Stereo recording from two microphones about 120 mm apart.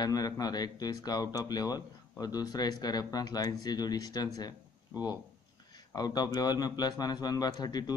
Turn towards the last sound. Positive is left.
turn(degrees=35)  # may be behind; listen again after turning